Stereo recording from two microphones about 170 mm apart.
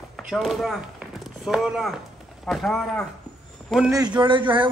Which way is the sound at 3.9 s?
20° right (ahead or behind).